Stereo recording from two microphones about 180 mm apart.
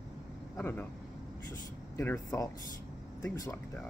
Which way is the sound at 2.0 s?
15° left (ahead or behind).